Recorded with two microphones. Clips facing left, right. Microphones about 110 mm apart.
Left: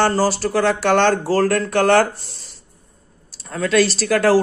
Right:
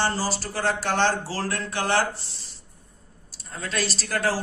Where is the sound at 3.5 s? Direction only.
90° left.